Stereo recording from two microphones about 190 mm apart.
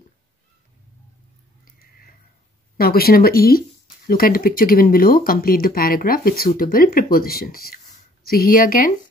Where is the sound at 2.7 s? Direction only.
50° left (ahead or behind).